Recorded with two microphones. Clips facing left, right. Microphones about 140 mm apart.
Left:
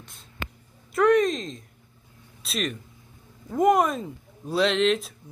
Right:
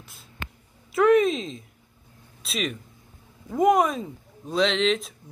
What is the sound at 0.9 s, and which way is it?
Speech, 5° right (ahead or behind).